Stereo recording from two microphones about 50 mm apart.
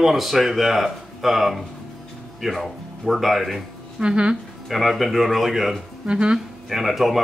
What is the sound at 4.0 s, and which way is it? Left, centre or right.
Speech, centre.